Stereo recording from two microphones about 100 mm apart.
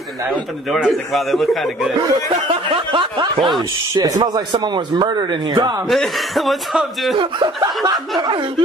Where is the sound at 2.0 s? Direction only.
50° right (ahead or behind).